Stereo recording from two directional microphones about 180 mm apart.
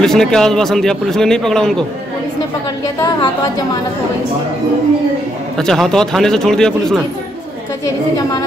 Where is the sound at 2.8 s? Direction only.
20° left (ahead or behind).